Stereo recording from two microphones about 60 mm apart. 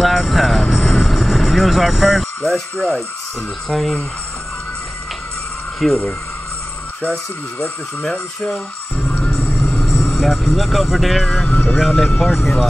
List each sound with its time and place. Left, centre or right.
0.0 s vehicle: centre
2.5 s speech: centre
5.8 s speech: centre
8.5 s music: centre
9.5 s vehicle: centre
10.1 s speech: centre
11.4 s speech: left
11.8 s speech: centre